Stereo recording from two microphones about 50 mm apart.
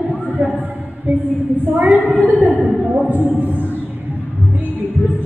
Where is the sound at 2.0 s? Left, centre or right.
Left.